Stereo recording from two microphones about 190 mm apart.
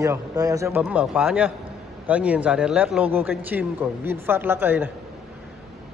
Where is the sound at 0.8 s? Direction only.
5° right (ahead or behind).